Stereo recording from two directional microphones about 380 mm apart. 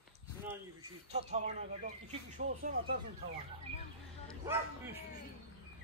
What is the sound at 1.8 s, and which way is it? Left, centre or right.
Speech, right.